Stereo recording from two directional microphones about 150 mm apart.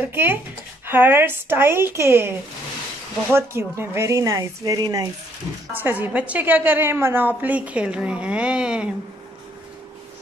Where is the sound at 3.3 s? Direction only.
15° right (ahead or behind).